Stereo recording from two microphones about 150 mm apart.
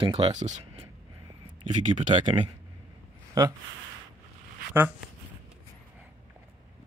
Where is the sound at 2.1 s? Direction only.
35° right (ahead or behind).